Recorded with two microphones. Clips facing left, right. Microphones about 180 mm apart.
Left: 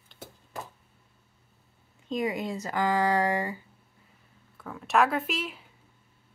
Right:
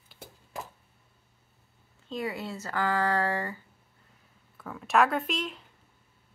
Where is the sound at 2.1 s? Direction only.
15° left (ahead or behind).